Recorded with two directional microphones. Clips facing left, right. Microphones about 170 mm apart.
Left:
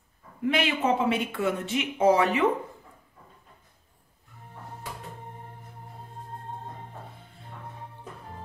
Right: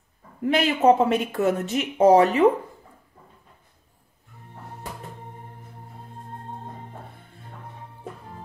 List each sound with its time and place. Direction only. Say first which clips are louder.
0.5 s speech: right 7 dB; 40° right (ahead or behind)